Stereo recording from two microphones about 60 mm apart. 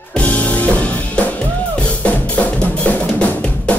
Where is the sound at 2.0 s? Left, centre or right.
Left.